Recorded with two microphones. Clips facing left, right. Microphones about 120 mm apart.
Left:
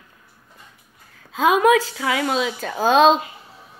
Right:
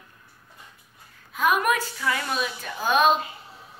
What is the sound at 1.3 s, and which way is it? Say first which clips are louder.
A woman's voice: left 7 dB; 90° left.